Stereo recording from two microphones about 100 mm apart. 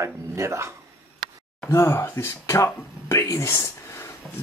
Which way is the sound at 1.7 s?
25° left (ahead or behind).